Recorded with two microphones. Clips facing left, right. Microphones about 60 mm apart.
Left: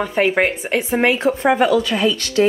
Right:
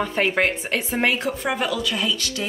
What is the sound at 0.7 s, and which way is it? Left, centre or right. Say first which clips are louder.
Speech: left 7 dB; left.